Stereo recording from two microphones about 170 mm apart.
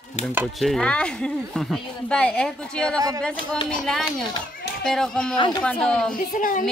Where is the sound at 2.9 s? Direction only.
20° right (ahead or behind).